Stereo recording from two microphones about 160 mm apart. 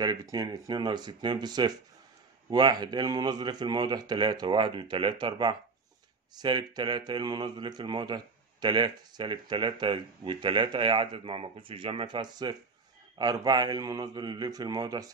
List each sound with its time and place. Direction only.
0.0 s speech: 25° right (ahead or behind)